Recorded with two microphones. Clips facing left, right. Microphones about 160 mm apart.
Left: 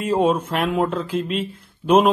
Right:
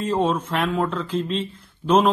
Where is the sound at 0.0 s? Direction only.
10° left (ahead or behind).